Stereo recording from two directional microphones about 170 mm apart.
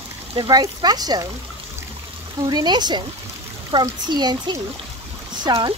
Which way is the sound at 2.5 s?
25° right (ahead or behind).